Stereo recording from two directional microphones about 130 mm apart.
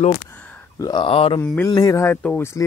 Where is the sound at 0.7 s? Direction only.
25° left (ahead or behind).